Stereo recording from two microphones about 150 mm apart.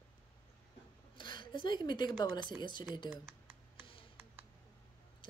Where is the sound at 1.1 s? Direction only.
30° left (ahead or behind).